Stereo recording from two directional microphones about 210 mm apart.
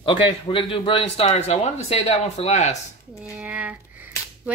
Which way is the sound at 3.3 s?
5° right (ahead or behind).